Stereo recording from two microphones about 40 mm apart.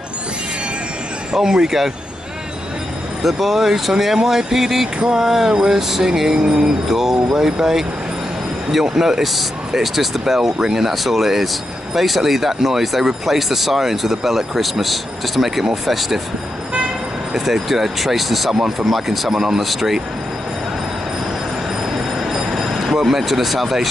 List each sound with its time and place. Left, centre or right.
1.3 s speech: centre
3.3 s speech: centre
5.5 s a sound: right
5.8 s speech: centre
8.9 s speech: centre
17.3 s speech: centre
21.9 s train: centre